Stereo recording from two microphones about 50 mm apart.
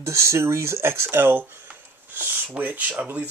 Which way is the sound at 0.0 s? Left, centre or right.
Right.